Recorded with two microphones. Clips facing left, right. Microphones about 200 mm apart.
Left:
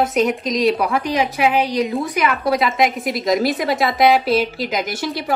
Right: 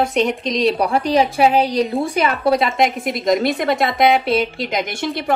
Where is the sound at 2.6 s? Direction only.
Centre (ahead or behind).